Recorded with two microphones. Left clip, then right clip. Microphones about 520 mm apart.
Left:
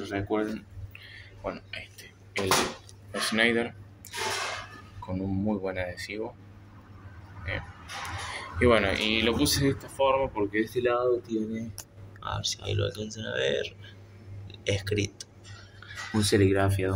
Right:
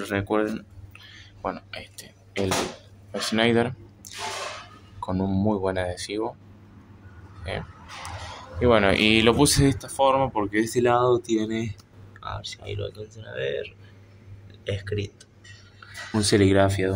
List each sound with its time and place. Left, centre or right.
0.0 s a sound: left
3.1 s speech: left
5.0 s speech: left
7.5 s speech: left
12.2 s speech: left